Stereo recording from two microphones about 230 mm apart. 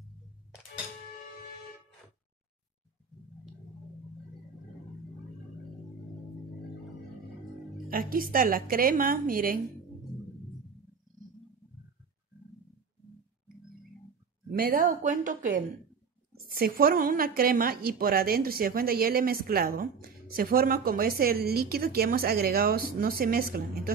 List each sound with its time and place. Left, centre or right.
7.9 s a woman's voice: right
14.5 s a woman's voice: right